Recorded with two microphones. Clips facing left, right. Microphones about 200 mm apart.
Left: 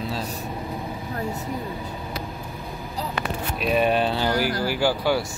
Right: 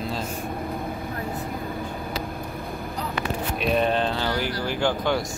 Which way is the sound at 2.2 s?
55° right (ahead or behind).